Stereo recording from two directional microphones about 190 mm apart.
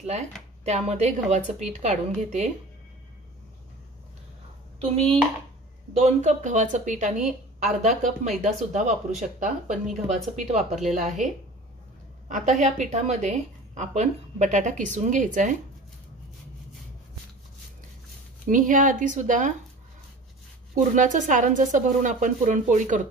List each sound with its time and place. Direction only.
0.7 s a woman's voice: 35° right (ahead or behind)
4.7 s a woman's voice: 30° right (ahead or behind)
12.3 s a woman's voice: 40° right (ahead or behind)
18.5 s speech: 45° right (ahead or behind)
20.7 s a woman's voice: 40° right (ahead or behind)